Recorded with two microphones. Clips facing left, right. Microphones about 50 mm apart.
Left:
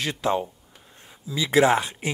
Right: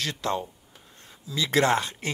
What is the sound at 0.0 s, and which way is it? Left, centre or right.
Speech, centre.